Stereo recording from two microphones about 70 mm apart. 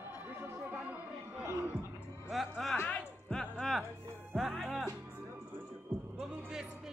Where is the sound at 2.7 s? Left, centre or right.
Left.